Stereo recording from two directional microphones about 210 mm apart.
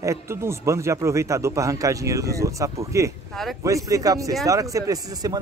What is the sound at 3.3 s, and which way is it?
Speech, centre (ahead or behind).